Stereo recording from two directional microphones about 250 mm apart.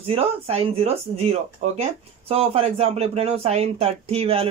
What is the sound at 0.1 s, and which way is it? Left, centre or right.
Speech, right.